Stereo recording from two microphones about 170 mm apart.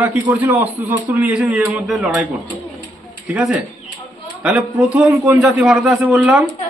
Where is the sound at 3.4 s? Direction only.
5° right (ahead or behind).